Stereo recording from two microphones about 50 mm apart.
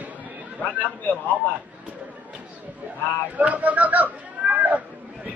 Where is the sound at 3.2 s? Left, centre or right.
Right.